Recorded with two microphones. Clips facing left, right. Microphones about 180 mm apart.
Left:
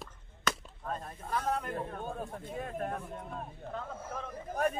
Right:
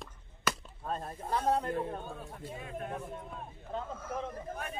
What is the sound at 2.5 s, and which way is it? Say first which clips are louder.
Speech: left 5 dB; 45° left (ahead or behind).